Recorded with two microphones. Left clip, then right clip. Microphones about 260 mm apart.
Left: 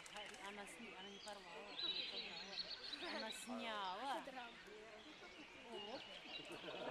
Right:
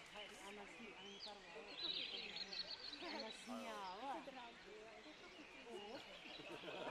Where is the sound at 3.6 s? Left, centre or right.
Left.